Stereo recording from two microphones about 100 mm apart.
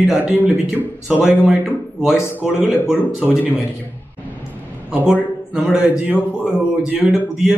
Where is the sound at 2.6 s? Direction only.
20° left (ahead or behind).